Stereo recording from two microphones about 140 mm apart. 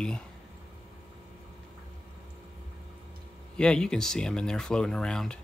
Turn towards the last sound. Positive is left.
turn(degrees=5)  # may be behind; listen again after turning